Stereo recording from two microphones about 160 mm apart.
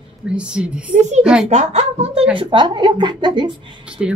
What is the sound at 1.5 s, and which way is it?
A woman's voice, 45° right (ahead or behind).